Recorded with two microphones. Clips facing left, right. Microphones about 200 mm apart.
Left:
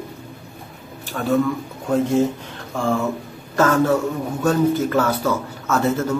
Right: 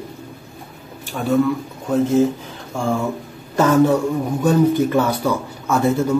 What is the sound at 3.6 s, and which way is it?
Speech, 15° right (ahead or behind).